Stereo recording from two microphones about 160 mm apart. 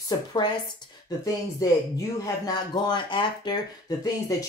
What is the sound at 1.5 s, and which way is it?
Speech, 20° left (ahead or behind).